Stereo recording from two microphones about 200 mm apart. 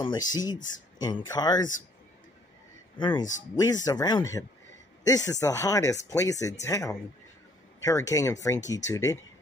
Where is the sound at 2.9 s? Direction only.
25° left (ahead or behind).